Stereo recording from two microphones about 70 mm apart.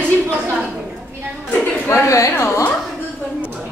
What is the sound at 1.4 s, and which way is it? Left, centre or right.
Speech, left.